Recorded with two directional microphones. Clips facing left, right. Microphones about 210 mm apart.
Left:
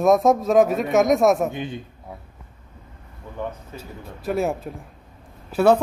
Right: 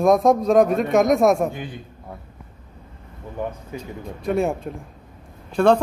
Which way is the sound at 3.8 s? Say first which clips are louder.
Right 4 dB; centre (ahead or behind).